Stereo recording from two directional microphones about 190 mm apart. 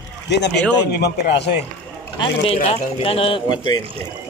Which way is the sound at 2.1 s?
30° left (ahead or behind).